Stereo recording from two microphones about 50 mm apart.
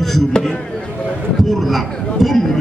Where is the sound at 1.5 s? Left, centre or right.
Centre.